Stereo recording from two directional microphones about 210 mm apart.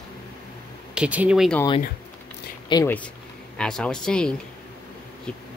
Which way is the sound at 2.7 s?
10° left (ahead or behind).